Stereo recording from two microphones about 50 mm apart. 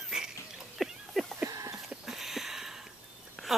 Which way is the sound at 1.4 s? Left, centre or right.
Right.